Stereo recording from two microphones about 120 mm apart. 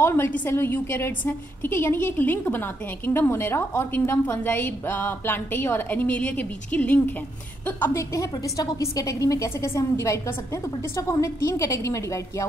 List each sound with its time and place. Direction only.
0.0 s a woman's voice: 20° left (ahead or behind)